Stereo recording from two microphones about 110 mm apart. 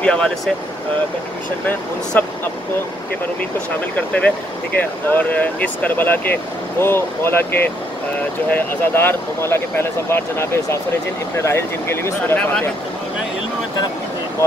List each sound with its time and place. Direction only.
0.0 s speech: 10° left (ahead or behind)
1.7 s speech: 15° left (ahead or behind)
3.9 s speech: 10° left (ahead or behind)